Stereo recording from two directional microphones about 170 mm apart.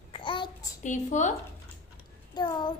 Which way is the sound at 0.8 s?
45° left (ahead or behind).